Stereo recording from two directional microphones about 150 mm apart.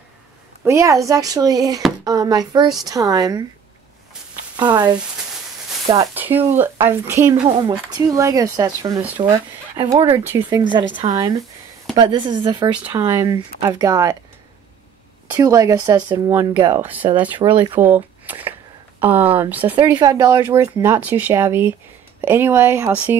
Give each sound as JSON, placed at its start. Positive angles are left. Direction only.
{"t": 0.7, "sound": "speech", "side_deg": -20}
{"t": 4.6, "sound": "speech", "side_deg": -30}
{"t": 6.1, "sound": "speech", "side_deg": -15}
{"t": 7.4, "sound": "speech", "side_deg": -35}
{"t": 15.2, "sound": "speech", "side_deg": -20}
{"t": 17.4, "sound": "speech", "side_deg": -35}
{"t": 17.7, "sound": "speech", "side_deg": -10}
{"t": 20.0, "sound": "speech", "side_deg": -25}